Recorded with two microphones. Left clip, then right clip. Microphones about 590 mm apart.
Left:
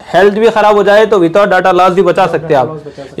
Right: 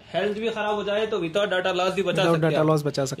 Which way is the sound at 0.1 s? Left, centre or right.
Left.